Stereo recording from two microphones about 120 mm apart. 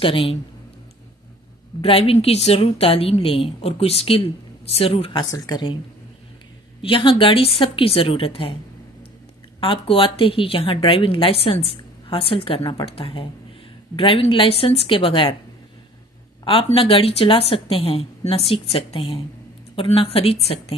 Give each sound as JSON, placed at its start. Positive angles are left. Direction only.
{"t": 0.0, "sound": "a woman's voice", "side_deg": 50}
{"t": 1.8, "sound": "a woman's voice", "side_deg": 55}
{"t": 5.2, "sound": "speech", "side_deg": 30}
{"t": 6.8, "sound": "a woman's voice", "side_deg": 45}
{"t": 9.6, "sound": "a woman's voice", "side_deg": 45}
{"t": 16.6, "sound": "a woman's voice", "side_deg": 50}